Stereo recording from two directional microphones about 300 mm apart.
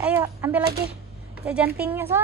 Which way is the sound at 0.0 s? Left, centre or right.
Centre.